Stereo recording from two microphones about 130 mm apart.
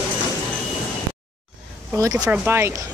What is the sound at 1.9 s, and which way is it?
Speech, 25° right (ahead or behind).